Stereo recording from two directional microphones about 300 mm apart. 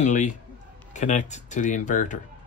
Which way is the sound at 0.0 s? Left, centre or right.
Left.